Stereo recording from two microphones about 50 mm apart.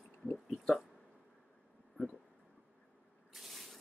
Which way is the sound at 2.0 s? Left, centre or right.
Right.